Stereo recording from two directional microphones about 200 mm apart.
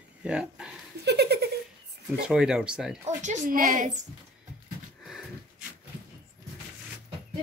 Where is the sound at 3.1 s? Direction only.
40° right (ahead or behind).